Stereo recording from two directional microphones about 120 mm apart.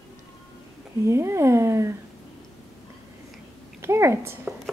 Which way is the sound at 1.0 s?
25° right (ahead or behind).